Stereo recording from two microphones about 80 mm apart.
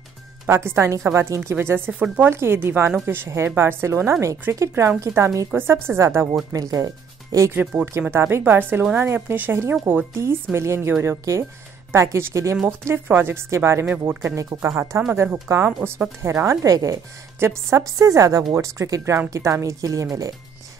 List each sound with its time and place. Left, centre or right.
0.7 s speech: right
6.5 s speech: right
7.7 s speech: right
13.8 s speech: right
14.3 s speech: right
17.4 s speech: right